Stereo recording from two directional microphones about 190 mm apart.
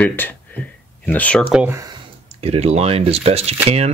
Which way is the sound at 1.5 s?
10° right (ahead or behind).